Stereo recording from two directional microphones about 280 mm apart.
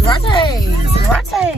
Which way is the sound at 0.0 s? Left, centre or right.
Centre.